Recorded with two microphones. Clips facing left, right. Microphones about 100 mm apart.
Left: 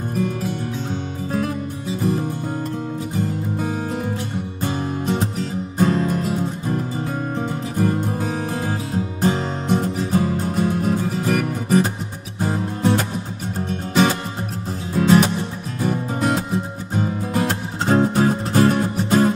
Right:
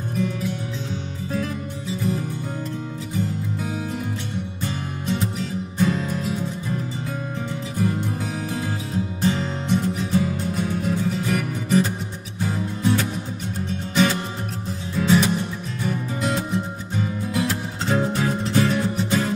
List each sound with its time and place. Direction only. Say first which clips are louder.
0.1 s music: left 1 dB; 50° left (ahead or behind)